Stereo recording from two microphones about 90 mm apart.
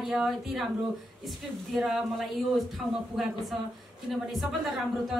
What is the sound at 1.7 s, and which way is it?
Speech, centre (ahead or behind).